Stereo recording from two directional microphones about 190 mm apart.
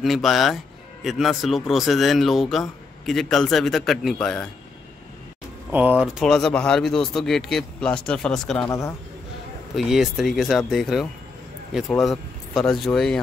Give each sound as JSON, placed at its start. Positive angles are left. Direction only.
{"t": 0.0, "sound": "a man's voice", "side_deg": 0}
{"t": 5.7, "sound": "a man's voice", "side_deg": -10}
{"t": 8.6, "sound": "speech", "side_deg": 15}
{"t": 9.8, "sound": "a man's voice", "side_deg": 0}